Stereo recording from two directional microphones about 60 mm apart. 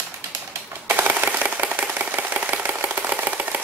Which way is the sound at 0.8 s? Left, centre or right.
Right.